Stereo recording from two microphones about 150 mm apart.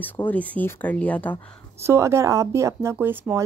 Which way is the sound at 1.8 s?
20° right (ahead or behind).